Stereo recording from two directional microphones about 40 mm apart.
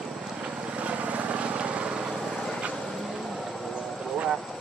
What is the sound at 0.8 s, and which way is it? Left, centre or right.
Vehicle, right.